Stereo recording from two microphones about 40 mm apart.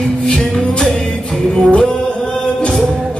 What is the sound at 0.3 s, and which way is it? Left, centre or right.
Music, centre.